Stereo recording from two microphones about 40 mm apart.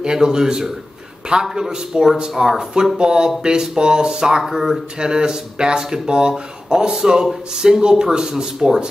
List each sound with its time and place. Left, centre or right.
0.0 s speech: centre
4.4 s speech: centre
4.9 s speech: centre